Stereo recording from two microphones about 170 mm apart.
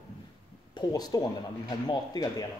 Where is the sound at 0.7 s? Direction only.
25° left (ahead or behind).